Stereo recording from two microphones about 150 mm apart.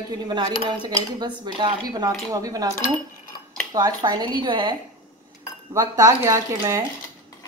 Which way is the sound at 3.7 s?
25° right (ahead or behind).